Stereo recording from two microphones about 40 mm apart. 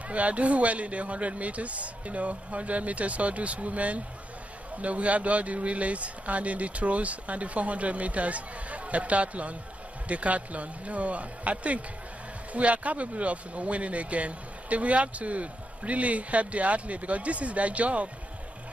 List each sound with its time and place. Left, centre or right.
0.1 s speech: right